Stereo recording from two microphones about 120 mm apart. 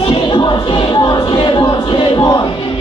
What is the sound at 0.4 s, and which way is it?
Music, 35° left (ahead or behind).